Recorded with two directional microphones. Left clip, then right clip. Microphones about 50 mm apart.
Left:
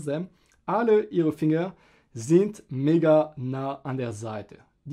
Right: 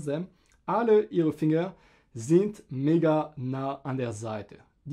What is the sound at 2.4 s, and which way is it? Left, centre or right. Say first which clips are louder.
Speech: left 2 dB; left.